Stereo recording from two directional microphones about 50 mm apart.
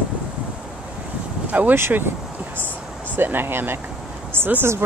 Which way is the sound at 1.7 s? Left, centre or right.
Right.